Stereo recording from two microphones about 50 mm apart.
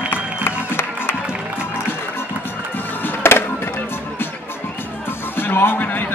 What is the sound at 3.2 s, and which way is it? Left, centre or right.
Music, left.